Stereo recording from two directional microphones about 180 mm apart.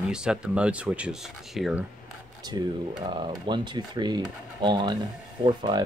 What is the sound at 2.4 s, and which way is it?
Speech, 25° right (ahead or behind).